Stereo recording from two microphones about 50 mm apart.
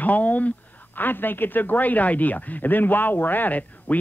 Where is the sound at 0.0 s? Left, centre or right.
Left.